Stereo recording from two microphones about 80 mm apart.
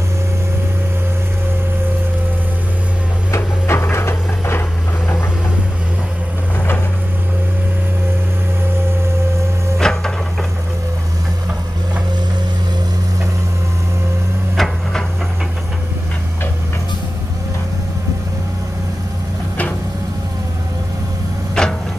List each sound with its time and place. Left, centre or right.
3.3 s a sound: left
9.8 s printer: centre
14.6 s hammer: centre
21.6 s vehicle: centre